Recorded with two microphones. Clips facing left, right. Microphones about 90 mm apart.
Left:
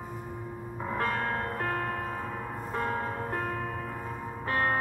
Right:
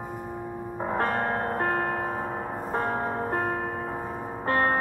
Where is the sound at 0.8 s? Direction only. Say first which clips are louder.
Right 4 dB; 40° right (ahead or behind).